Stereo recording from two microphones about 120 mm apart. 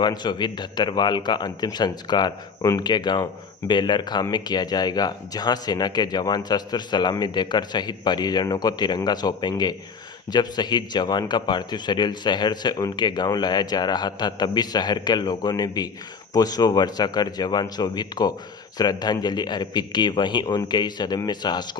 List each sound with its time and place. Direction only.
0.0 s speech: 40° left (ahead or behind)